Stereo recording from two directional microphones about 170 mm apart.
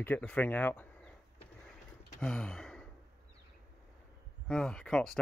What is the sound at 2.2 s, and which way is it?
Gasp, 5° left (ahead or behind).